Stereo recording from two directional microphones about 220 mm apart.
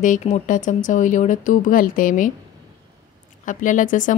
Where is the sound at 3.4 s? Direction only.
35° left (ahead or behind).